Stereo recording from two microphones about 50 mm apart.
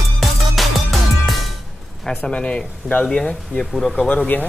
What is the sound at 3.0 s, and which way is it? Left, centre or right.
Speech, centre.